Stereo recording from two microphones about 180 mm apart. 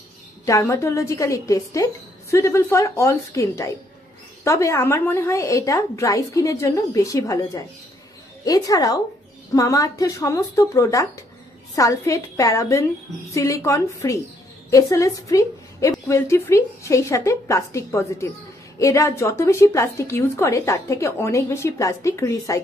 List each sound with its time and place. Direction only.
0.5 s a woman's voice: 15° left (ahead or behind)